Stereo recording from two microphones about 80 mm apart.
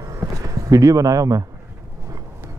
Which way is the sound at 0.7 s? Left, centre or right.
Right.